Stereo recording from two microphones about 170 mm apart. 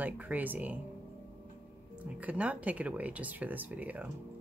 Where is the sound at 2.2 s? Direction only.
10° right (ahead or behind).